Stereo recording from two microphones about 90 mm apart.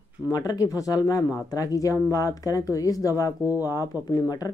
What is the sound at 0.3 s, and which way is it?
Speech, 40° left (ahead or behind).